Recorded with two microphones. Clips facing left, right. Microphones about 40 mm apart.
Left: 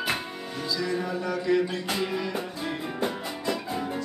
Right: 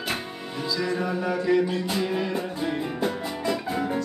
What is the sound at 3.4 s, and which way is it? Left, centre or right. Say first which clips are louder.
Music: right 3 dB; centre.